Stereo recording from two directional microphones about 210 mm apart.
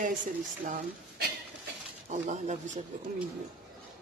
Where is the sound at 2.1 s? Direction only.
35° right (ahead or behind).